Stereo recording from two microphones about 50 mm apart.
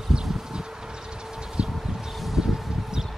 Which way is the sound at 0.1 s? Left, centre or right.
Centre.